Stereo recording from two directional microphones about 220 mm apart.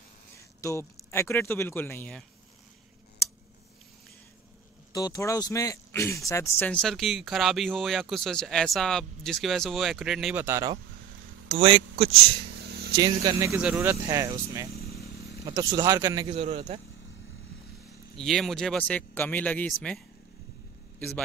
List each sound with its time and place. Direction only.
0.6 s speech: 15° left (ahead or behind)
4.9 s speech: 15° left (ahead or behind); by 10.8 s 15° right (ahead or behind)
11.4 s speech: 25° right (ahead or behind)
12.6 s vehicle: 50° right (ahead or behind)
12.9 s speech: 20° right (ahead or behind)
14.7 s motorcycle: 45° left (ahead or behind)
15.4 s speech: 15° right (ahead or behind)
16.3 s a man's voice: 25° right (ahead or behind)
18.1 s speech: centre (ahead or behind)